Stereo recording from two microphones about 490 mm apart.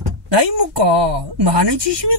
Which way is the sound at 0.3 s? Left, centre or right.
Right.